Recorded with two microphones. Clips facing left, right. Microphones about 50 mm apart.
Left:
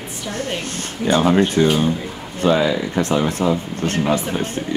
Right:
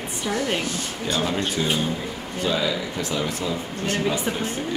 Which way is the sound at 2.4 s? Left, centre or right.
Left.